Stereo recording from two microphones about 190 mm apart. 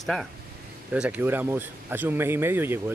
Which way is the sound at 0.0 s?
Centre (ahead or behind).